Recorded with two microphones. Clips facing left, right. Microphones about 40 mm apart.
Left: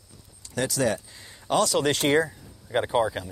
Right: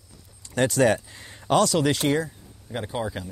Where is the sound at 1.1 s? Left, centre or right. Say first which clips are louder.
Right 3 dB; right.